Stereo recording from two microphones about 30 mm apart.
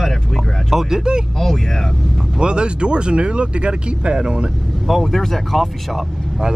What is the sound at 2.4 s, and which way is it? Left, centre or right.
Speech, right.